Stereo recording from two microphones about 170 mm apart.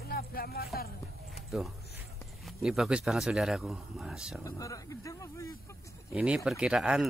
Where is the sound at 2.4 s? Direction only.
Centre (ahead or behind).